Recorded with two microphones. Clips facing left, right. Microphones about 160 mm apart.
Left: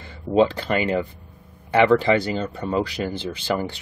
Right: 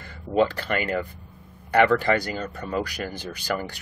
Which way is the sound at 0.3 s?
20° left (ahead or behind).